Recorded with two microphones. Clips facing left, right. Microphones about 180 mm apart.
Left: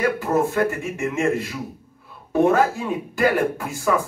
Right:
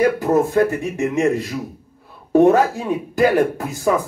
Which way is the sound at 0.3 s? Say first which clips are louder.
Right 3 dB; 40° right (ahead or behind).